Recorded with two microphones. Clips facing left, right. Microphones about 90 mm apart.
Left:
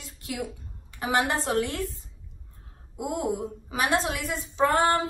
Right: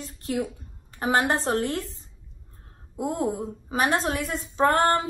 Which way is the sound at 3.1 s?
35° right (ahead or behind).